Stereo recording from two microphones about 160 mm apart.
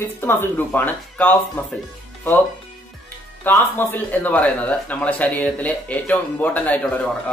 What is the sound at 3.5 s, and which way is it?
A man's voice, 15° left (ahead or behind).